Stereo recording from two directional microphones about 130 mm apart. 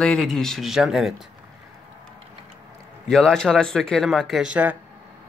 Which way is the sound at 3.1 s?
5° left (ahead or behind).